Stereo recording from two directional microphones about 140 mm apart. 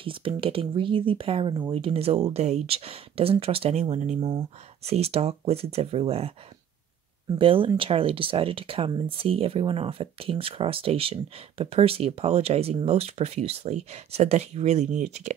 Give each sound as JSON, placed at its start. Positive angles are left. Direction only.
{"t": 0.0, "sound": "speech", "side_deg": -40}